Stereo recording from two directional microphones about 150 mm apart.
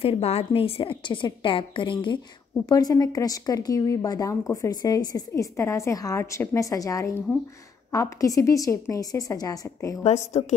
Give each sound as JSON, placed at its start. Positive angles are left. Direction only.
{"t": 0.0, "sound": "a woman's voice", "side_deg": 40}
{"t": 10.0, "sound": "a woman's voice", "side_deg": 50}